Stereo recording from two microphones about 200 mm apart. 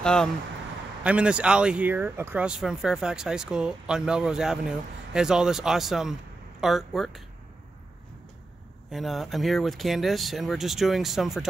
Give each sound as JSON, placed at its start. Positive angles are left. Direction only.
{"t": 0.0, "sound": "speech", "side_deg": 5}
{"t": 8.9, "sound": "speech", "side_deg": 0}